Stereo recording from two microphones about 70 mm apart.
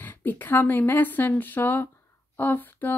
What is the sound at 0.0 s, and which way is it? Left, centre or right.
A woman's voice, left.